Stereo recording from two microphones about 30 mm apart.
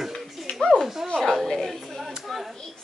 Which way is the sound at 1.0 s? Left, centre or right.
Centre.